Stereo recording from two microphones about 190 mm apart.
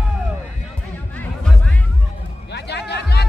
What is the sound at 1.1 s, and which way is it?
Music, 10° left (ahead or behind).